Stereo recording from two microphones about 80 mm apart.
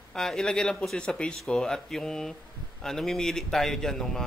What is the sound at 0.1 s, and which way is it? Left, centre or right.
Speech, centre.